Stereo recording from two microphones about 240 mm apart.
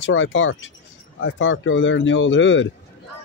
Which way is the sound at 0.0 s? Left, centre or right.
Left.